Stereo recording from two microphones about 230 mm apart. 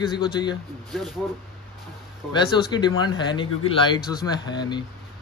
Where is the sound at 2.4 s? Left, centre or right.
Centre.